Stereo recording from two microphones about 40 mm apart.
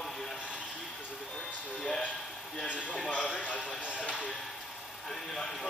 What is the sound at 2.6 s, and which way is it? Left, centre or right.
Speech, left.